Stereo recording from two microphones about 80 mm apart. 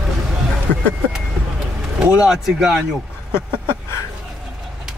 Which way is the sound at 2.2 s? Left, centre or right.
Centre.